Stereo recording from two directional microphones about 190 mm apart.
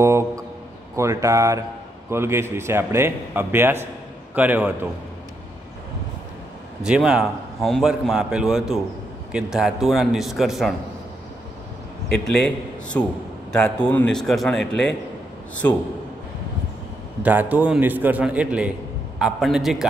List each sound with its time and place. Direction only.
0.0 s a sound: 15° right (ahead or behind)
0.9 s a man's voice: 15° right (ahead or behind)
6.8 s a man's voice: 5° right (ahead or behind)
12.1 s a man's voice: 5° left (ahead or behind)
15.6 s a man's voice: 15° left (ahead or behind)
17.2 s a man's voice: 10° right (ahead or behind)